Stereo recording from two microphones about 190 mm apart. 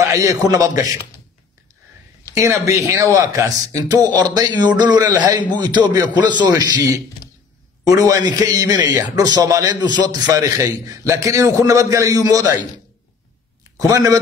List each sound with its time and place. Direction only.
0.0 s a man's voice: 15° right (ahead or behind)
2.3 s a man's voice: 15° right (ahead or behind)
13.7 s a man's voice: 20° right (ahead or behind)